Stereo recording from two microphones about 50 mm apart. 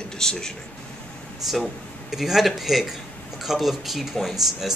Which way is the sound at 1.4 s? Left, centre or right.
Centre.